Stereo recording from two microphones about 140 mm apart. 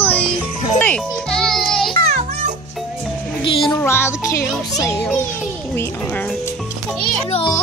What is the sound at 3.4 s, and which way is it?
Music, 35° left (ahead or behind).